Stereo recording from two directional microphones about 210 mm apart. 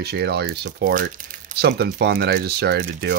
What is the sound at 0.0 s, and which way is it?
Speech, 50° right (ahead or behind).